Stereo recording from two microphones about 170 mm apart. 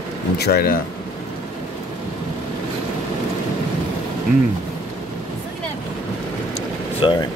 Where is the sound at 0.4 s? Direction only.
65° left (ahead or behind).